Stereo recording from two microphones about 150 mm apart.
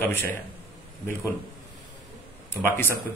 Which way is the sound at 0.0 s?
15° left (ahead or behind).